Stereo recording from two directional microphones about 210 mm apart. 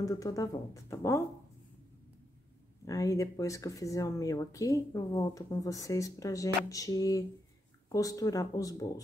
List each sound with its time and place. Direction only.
0.0 s speech: 15° left (ahead or behind)
2.8 s speech: 15° left (ahead or behind)